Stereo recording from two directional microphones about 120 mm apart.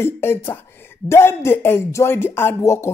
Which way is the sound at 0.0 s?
20° left (ahead or behind).